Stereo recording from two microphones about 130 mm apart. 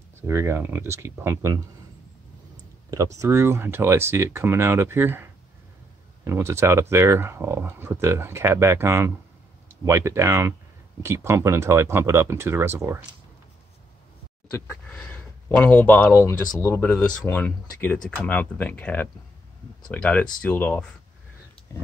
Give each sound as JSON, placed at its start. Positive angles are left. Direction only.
{"t": 0.3, "sound": "speech", "side_deg": -20}
{"t": 3.2, "sound": "speech", "side_deg": -20}
{"t": 14.5, "sound": "speech", "side_deg": 20}